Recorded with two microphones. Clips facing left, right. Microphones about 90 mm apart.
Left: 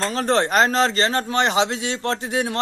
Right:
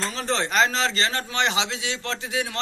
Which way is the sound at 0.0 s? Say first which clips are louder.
Left 6 dB; 45° left (ahead or behind).